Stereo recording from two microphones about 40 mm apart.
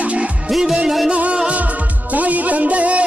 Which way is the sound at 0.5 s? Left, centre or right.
Centre.